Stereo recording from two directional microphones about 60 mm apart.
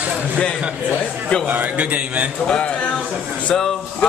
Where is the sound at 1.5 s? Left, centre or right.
Right.